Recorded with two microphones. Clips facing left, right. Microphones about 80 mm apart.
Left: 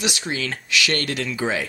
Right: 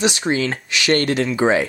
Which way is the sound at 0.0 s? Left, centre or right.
Right.